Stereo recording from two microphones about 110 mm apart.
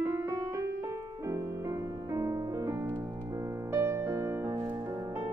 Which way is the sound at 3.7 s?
25° right (ahead or behind).